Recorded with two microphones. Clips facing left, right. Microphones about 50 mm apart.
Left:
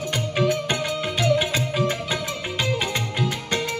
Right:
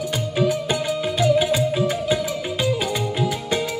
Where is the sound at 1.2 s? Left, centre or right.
Centre.